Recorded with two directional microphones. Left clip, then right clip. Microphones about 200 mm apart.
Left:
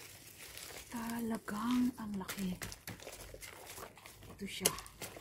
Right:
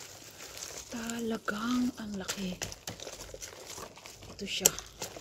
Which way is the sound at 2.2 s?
10° right (ahead or behind).